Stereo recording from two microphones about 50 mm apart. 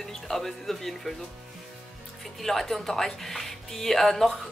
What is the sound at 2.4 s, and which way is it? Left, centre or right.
Speech, centre.